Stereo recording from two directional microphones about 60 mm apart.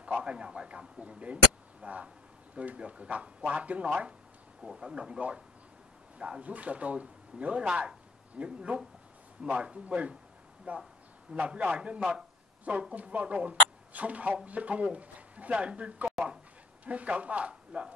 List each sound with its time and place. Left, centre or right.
0.0 s speech: centre